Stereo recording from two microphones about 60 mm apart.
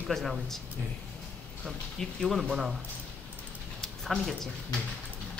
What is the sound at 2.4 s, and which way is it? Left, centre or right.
Speech, centre.